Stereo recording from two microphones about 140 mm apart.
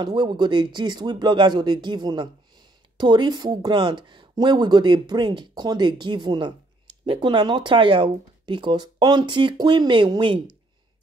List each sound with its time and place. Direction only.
0.0 s speech: 30° right (ahead or behind)